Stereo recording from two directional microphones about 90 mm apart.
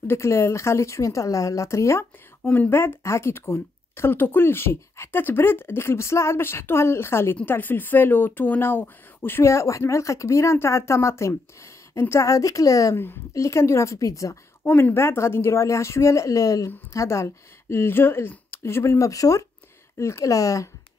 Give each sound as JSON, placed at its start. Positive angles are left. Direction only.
{"t": 0.0, "sound": "speech", "side_deg": 30}
{"t": 12.9, "sound": "speech", "side_deg": 25}
{"t": 14.6, "sound": "speech", "side_deg": 20}